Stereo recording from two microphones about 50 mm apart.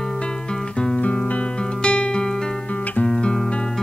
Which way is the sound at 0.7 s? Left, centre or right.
Centre.